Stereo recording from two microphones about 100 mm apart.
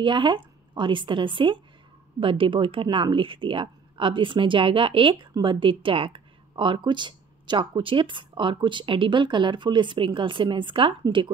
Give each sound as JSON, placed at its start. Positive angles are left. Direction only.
{"t": 0.0, "sound": "speech", "side_deg": -55}